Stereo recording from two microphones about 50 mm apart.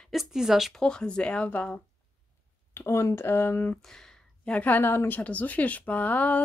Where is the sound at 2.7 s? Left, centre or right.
Left.